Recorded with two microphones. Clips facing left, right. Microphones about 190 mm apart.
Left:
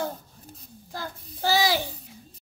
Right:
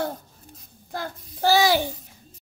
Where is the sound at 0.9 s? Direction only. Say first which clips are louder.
Right 4 dB; 60° right (ahead or behind).